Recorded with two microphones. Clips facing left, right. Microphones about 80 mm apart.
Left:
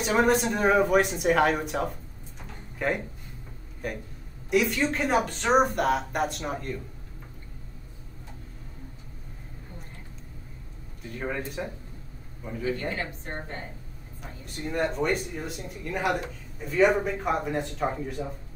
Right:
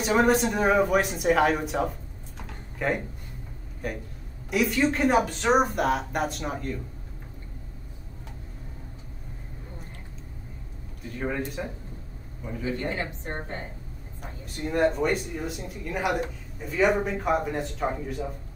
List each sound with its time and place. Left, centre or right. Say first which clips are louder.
0.0 s speech: right 1 dB; centre
11.1 s speech: right 2 dB; centre
12.9 s a woman's voice: right 2 dB; right
14.4 s speech: right 5 dB; centre